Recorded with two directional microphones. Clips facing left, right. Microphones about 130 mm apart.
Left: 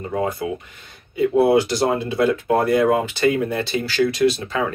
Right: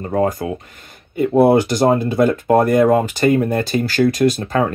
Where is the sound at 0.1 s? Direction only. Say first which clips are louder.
Right 5 dB; 40° right (ahead or behind).